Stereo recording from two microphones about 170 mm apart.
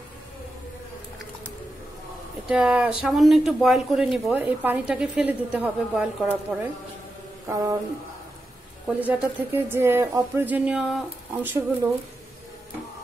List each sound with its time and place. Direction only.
2.4 s speech: 5° right (ahead or behind)
7.4 s a sound: 20° right (ahead or behind)
8.8 s speech: 10° right (ahead or behind)